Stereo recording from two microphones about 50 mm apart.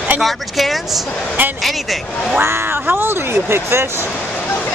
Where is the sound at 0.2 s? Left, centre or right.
Centre.